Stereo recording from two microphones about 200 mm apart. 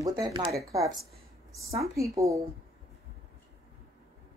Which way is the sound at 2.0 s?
15° right (ahead or behind).